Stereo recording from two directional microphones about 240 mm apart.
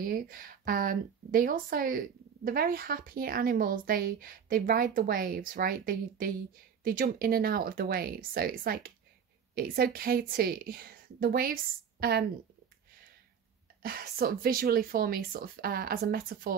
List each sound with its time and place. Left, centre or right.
0.0 s a woman's voice: right
13.8 s a woman's voice: right